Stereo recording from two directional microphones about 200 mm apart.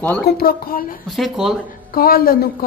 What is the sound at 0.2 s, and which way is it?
Speech, 50° left (ahead or behind).